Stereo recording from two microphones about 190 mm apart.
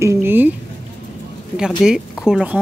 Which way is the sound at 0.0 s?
10° right (ahead or behind).